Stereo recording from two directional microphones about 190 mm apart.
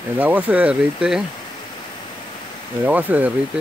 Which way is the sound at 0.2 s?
10° right (ahead or behind).